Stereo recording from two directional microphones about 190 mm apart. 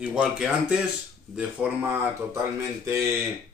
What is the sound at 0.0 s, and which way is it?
Speech, 5° right (ahead or behind).